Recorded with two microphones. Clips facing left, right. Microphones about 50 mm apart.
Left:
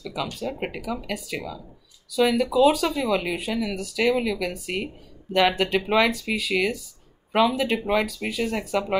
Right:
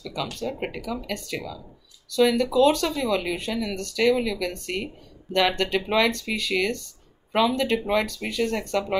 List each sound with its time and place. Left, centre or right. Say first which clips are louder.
0.0 s speech: even; centre